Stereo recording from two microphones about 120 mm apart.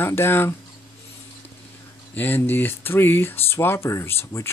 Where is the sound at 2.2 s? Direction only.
15° left (ahead or behind).